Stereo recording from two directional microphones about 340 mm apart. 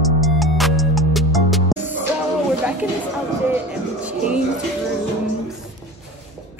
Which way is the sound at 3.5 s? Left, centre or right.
Centre.